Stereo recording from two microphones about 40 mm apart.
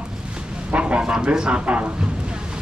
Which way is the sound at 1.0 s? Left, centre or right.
Right.